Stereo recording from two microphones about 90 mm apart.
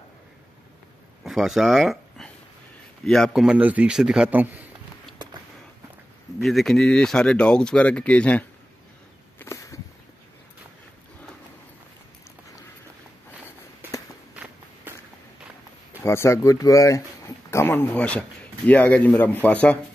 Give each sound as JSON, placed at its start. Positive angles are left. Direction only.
{"t": 1.2, "sound": "a man's voice", "side_deg": -5}
{"t": 3.5, "sound": "speech", "side_deg": -15}
{"t": 4.3, "sound": "a man's voice", "side_deg": -20}
{"t": 6.4, "sound": "speech", "side_deg": 0}
{"t": 9.4, "sound": "a sound", "side_deg": 35}
{"t": 16.0, "sound": "speech", "side_deg": 30}